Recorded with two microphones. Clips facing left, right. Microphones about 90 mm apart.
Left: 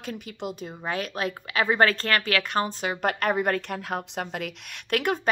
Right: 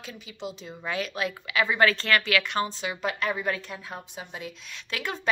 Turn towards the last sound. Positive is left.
turn(degrees=55)  # may be behind; listen again after turning